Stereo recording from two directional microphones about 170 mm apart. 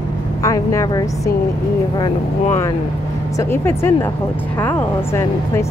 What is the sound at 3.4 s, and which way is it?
Speech, 15° left (ahead or behind).